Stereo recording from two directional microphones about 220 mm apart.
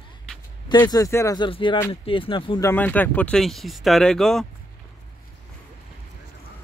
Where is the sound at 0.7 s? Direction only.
20° left (ahead or behind).